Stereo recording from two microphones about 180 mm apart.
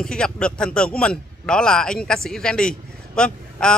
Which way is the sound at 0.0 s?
5° left (ahead or behind).